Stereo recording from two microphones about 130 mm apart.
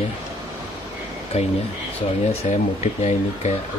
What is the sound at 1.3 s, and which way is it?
Speech, 50° left (ahead or behind).